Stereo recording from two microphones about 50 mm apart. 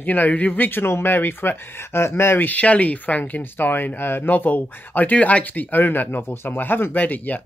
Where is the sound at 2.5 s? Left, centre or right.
Left.